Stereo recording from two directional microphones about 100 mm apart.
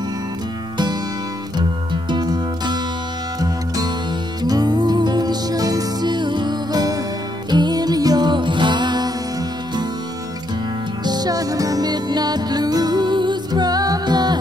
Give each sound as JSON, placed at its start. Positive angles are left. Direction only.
{"t": 2.0, "sound": "music", "side_deg": -45}
{"t": 11.1, "sound": "music", "side_deg": -40}